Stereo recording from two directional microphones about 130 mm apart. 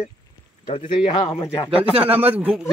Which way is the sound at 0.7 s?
45° left (ahead or behind).